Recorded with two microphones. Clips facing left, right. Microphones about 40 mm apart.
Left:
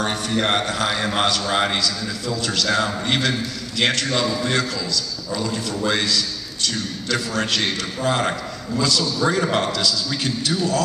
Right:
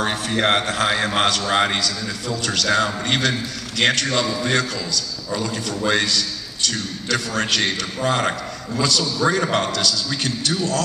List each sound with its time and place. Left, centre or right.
0.0 s a man's voice: centre
9.7 s a man's voice: centre